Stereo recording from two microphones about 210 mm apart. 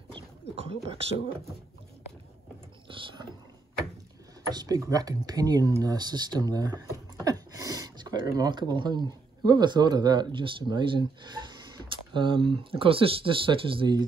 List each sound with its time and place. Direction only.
0.1 s beatboxing: 25° right (ahead or behind)
2.9 s speech: 25° right (ahead or behind)
4.5 s speech: 20° right (ahead or behind)